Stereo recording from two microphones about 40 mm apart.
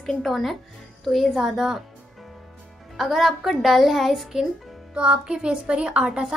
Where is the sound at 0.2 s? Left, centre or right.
Centre.